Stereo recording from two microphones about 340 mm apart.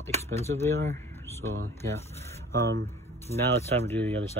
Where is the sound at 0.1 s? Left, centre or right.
Centre.